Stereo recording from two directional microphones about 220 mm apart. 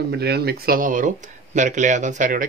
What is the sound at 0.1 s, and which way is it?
Speech, 45° right (ahead or behind).